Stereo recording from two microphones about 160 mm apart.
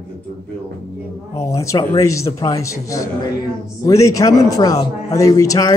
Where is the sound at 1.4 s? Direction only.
20° left (ahead or behind).